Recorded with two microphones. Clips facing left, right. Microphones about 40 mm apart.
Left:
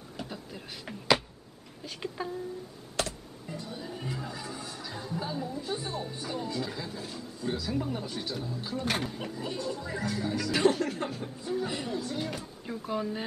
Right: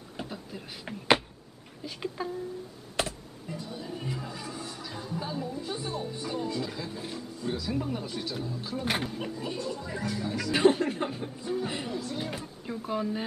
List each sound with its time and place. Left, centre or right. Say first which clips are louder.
0.3 s beatboxing: right 1 dB; centre
1.9 s speech: right 2 dB; centre
3.0 s computer keyboard: right 1 dB; right
3.5 s speech: right 1 dB; centre
7.0 s speech: right 2 dB; centre
7.4 s speech: even; centre
8.8 s speech: right 2 dB; centre
10.5 s speech: right 3 dB; right
11.9 s speech: left 1 dB; centre